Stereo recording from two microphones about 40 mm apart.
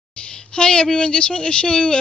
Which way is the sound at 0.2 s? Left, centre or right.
Left.